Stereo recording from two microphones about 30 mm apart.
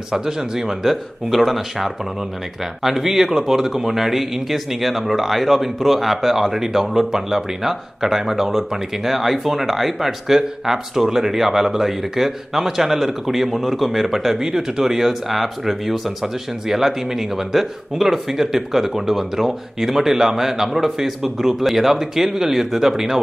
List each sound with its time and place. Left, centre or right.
0.1 s speech: centre
1.3 s speech: centre